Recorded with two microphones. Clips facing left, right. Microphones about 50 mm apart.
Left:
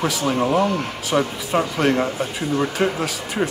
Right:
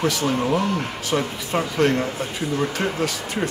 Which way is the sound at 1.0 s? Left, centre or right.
Centre.